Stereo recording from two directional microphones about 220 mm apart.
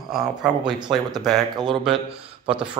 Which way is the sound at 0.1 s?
Centre (ahead or behind).